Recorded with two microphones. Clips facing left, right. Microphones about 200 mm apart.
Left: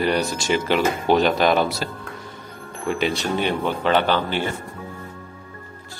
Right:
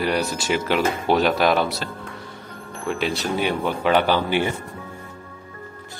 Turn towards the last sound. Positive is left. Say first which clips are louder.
# right 2 dB
turn(degrees=-15)  # may be behind; listen again after turning